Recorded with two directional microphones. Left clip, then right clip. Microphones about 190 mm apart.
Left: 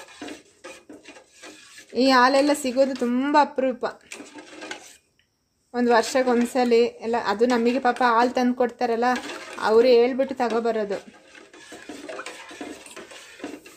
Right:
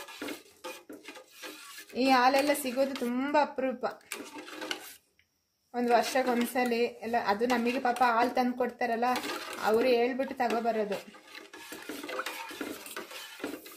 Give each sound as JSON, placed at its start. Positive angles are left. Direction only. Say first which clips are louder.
{"t": 2.0, "sound": "speech", "louder": "left 7 dB", "side_deg": 45}
{"t": 5.7, "sound": "speech", "louder": "left 6 dB", "side_deg": 45}